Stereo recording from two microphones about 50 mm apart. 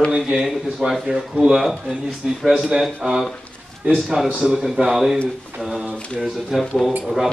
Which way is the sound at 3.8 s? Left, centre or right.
Right.